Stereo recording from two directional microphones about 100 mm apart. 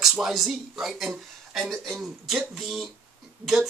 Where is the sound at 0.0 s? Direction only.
5° right (ahead or behind).